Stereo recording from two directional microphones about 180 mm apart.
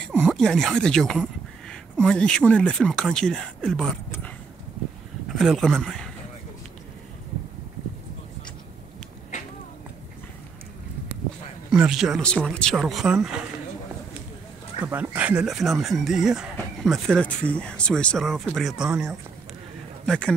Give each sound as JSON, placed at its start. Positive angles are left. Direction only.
{"t": 0.0, "sound": "speech", "side_deg": 5}
{"t": 5.3, "sound": "speech", "side_deg": 0}
{"t": 9.3, "sound": "a sound", "side_deg": 40}
{"t": 11.7, "sound": "speech", "side_deg": -5}
{"t": 14.9, "sound": "speech", "side_deg": -10}
{"t": 20.1, "sound": "speech", "side_deg": 5}